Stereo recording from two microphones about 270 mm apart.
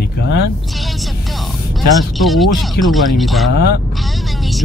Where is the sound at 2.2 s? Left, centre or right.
Centre.